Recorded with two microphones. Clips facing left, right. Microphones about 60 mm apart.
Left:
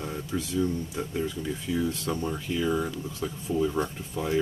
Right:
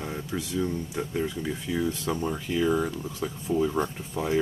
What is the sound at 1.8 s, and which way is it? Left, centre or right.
Speech, centre.